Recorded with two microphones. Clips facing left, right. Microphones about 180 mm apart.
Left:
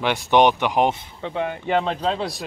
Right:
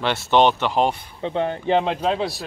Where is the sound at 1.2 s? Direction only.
20° right (ahead or behind); by 2.4 s 5° right (ahead or behind).